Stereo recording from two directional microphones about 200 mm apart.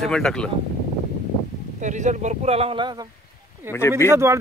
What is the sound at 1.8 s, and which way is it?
Speech, 35° right (ahead or behind).